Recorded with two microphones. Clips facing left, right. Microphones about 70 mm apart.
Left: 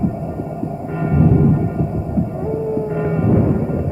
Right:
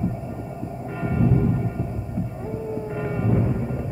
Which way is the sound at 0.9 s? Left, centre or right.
Left.